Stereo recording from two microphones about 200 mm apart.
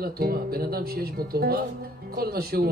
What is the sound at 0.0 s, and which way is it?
Speech, 50° right (ahead or behind).